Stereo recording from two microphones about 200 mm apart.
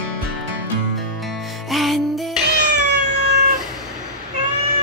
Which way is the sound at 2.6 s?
60° right (ahead or behind).